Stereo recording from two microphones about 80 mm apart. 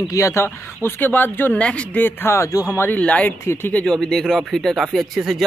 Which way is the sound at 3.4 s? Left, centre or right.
Left.